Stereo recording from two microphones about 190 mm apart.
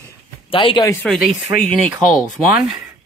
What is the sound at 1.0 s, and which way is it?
Speech, centre (ahead or behind).